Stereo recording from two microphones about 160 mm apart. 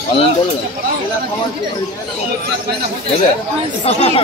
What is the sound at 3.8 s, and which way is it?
Speech, 40° left (ahead or behind).